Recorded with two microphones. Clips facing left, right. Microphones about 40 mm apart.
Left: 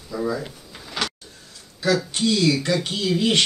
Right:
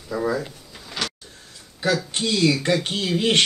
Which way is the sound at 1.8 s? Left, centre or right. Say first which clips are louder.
Left 2 dB; right.